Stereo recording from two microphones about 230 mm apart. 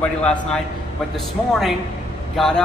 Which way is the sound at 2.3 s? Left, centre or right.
Centre.